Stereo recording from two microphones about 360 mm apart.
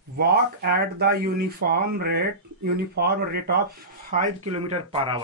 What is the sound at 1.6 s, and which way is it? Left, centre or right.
Speech, right.